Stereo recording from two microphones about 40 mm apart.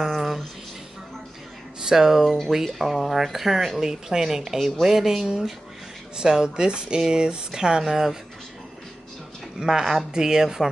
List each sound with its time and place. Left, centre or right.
0.0 s a sound: centre
1.8 s speech: centre
9.6 s speech: centre